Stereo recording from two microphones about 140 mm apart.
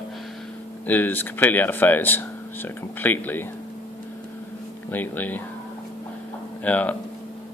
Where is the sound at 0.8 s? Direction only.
15° left (ahead or behind).